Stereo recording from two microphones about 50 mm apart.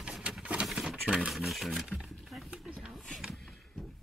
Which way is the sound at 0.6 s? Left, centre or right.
Centre.